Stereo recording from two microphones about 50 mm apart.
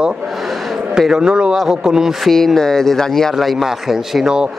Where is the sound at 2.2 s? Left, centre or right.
Centre.